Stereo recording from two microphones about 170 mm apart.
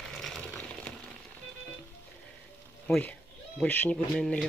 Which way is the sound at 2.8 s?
10° left (ahead or behind).